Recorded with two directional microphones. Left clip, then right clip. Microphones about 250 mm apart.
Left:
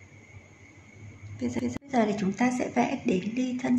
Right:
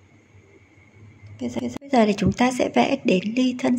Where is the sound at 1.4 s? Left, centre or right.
Right.